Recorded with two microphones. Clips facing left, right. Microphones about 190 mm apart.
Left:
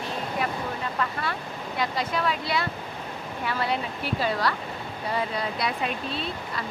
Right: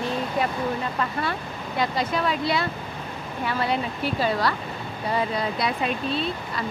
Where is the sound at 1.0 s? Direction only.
25° right (ahead or behind).